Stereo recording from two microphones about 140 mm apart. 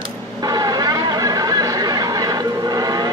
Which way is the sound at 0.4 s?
30° right (ahead or behind).